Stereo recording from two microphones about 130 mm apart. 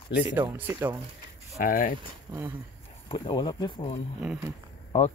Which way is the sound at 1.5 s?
90° left.